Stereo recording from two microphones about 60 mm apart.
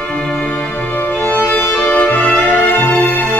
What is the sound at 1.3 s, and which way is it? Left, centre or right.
Music, left.